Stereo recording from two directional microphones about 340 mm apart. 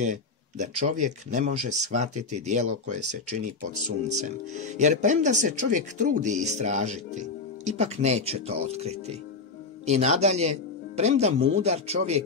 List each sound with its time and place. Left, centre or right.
0.0 s speech: right
4.2 s speech: right